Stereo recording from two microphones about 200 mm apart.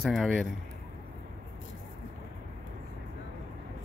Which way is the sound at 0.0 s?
Centre (ahead or behind).